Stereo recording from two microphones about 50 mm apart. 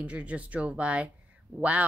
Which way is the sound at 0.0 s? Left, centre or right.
Right.